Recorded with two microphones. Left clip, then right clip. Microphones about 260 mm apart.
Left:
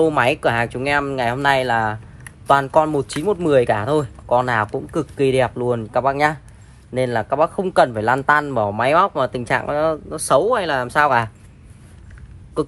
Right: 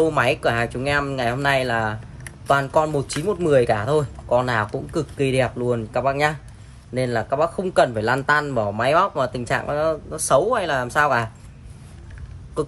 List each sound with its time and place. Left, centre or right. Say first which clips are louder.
0.0 s speech: left 2 dB; left